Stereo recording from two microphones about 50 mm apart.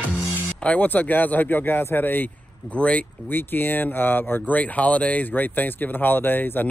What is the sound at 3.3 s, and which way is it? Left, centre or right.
Speech, left.